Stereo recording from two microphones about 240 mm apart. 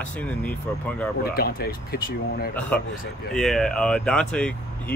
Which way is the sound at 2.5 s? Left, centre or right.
Centre.